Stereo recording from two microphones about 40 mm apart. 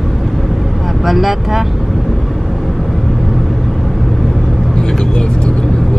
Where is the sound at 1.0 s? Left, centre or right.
Centre.